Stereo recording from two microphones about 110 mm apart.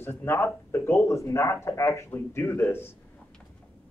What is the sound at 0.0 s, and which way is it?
Speech, 20° left (ahead or behind).